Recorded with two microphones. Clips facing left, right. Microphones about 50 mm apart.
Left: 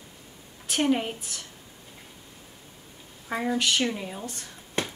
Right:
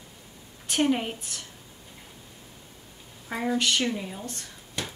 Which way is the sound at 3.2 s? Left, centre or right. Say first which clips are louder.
Even; centre.